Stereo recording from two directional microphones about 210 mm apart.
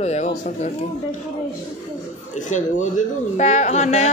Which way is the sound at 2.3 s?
35° left (ahead or behind).